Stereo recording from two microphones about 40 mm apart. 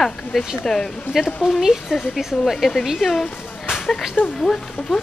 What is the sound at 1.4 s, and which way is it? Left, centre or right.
A woman's voice, centre.